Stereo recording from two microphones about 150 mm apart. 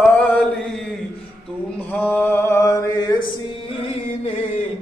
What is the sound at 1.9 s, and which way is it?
Mantra, 10° left (ahead or behind).